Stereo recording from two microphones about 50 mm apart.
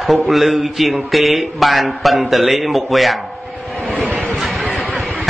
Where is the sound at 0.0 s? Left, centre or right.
Centre.